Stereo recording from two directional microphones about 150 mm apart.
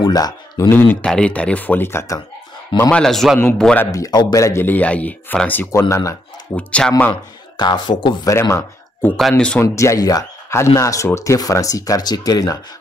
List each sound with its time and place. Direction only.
0.0 s speech: 25° left (ahead or behind)
2.9 s a man's voice: 5° left (ahead or behind)
3.8 s speech: 20° left (ahead or behind)
6.5 s speech: 10° left (ahead or behind)
7.5 s speech: 30° left (ahead or behind); by 9.7 s 10° left (ahead or behind)
9.8 s speech: 20° left (ahead or behind)